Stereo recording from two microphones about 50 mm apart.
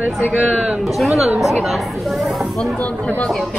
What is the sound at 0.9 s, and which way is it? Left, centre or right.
Speech, centre.